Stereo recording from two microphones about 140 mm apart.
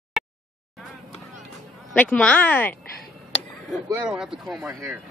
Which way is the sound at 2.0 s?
10° left (ahead or behind).